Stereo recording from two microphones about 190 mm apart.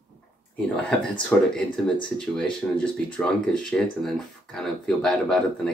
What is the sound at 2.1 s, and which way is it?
Speech, 5° left (ahead or behind).